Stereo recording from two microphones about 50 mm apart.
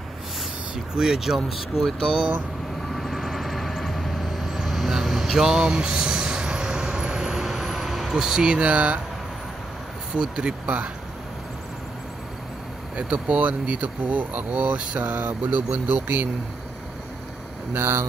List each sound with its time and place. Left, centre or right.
0.9 s speech: centre
2.9 s vehicle: centre; by 9.0 s right
10.1 s speech: centre
12.9 s speech: right
17.7 s speech: right